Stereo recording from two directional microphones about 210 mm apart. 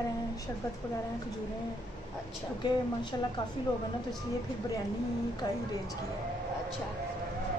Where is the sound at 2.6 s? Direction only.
20° left (ahead or behind).